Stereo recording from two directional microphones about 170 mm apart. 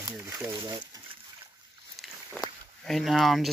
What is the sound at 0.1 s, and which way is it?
Speech, 15° right (ahead or behind).